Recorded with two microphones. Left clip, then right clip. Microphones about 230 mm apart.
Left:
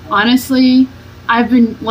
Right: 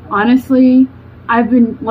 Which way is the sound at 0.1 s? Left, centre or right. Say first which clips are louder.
Even; centre.